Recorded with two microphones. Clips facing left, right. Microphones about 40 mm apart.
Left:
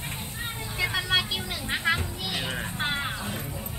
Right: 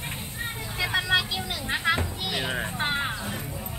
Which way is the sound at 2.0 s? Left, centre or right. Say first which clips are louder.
Right 2 dB; centre.